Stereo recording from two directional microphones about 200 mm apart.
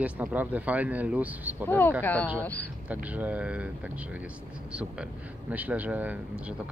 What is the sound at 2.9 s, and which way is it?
Speech, 5° right (ahead or behind).